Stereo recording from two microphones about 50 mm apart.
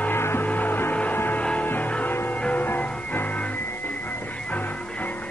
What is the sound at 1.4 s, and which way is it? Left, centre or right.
Music, left.